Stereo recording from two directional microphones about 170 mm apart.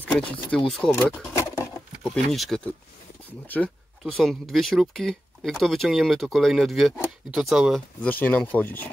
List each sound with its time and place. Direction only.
0.0 s speech: 10° left (ahead or behind)
1.3 s bird: 15° left (ahead or behind)
2.0 s speech: centre (ahead or behind)
8.0 s speech: 10° left (ahead or behind)